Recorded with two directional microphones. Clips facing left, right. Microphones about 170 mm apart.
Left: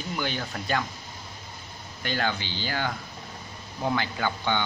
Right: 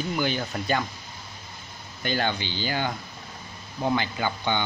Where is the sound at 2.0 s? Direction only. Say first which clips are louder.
Right 2 dB; centre (ahead or behind).